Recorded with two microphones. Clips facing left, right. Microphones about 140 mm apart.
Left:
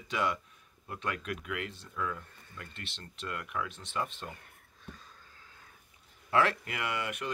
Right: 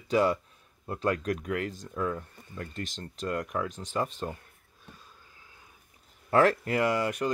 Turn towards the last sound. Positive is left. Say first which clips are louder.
# right 9 dB
turn(degrees=-35)  # may be behind; listen again after turning